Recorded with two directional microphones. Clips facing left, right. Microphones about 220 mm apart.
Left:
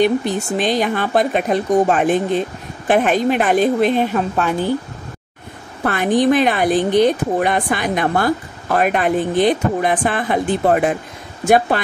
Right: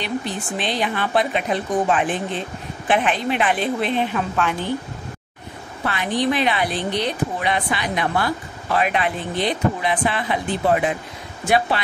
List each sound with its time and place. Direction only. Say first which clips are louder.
0.0 s speech: left 10 dB; 45° left (ahead or behind)
5.9 s speech: left 7 dB; 45° left (ahead or behind)